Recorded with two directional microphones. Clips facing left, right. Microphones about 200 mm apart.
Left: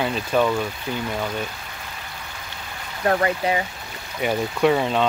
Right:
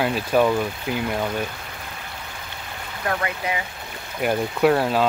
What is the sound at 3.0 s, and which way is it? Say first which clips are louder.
Speech: left 6 dB; 35° left (ahead or behind).